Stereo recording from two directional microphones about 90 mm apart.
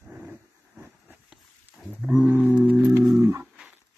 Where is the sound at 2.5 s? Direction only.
15° right (ahead or behind).